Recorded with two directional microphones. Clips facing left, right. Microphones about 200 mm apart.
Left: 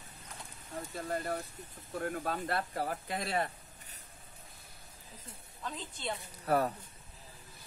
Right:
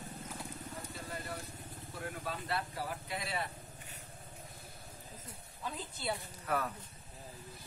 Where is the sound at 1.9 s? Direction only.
50° left (ahead or behind).